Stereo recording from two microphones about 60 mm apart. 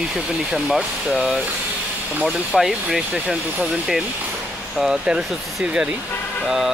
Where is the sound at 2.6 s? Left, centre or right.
Centre.